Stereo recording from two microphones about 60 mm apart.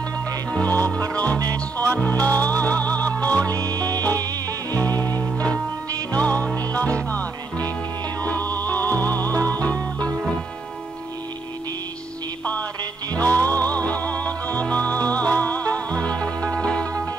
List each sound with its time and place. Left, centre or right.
0.5 s music: left
3.4 s music: right
4.7 s music: left
6.1 s music: left
13.1 s music: left